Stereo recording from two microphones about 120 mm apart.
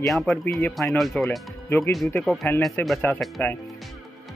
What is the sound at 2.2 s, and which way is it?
Speech, centre (ahead or behind).